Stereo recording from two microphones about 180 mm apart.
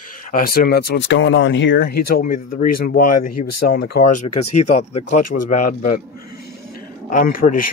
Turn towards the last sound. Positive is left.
turn(degrees=50)  # may be behind; listen again after turning